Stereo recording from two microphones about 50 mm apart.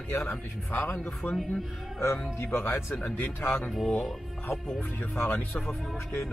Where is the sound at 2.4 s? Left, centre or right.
Left.